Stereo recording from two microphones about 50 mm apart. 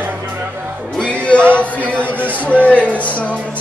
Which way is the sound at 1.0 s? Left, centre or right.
Left.